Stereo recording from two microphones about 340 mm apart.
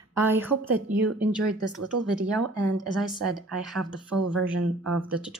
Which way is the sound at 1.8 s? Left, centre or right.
Right.